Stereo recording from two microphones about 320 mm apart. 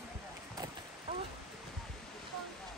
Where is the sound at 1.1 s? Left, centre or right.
Centre.